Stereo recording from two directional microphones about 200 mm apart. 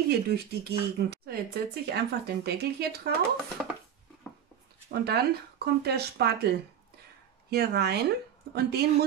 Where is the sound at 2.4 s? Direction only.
55° right (ahead or behind).